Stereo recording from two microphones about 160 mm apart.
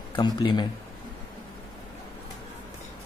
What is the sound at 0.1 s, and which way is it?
Speech, 30° left (ahead or behind).